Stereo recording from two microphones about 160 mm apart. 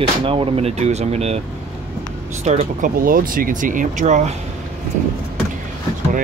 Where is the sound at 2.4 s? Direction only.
45° right (ahead or behind).